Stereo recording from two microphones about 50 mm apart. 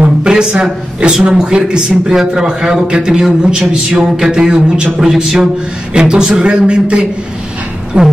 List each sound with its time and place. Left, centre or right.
0.2 s a sound: centre
1.1 s a man's voice: centre
5.0 s a man's voice: centre